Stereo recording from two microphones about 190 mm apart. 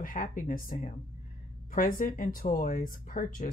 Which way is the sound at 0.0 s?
45° left (ahead or behind).